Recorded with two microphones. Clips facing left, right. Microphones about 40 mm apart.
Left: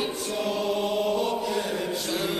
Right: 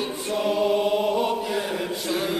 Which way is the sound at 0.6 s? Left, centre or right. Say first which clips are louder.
Right 5 dB; centre.